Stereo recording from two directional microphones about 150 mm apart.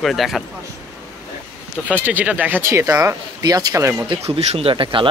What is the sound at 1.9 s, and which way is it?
Speech, 10° right (ahead or behind).